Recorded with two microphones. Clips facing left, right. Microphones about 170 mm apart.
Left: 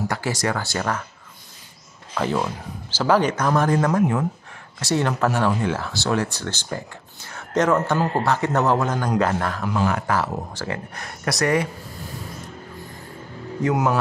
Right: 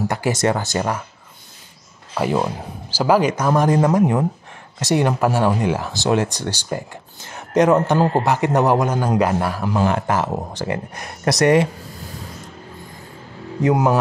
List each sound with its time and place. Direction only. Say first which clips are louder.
0.1 s speech: right 5 dB; 20° right (ahead or behind)
2.1 s speech: right 3 dB; 15° right (ahead or behind)
9.7 s speech: right 3 dB; 30° right (ahead or behind)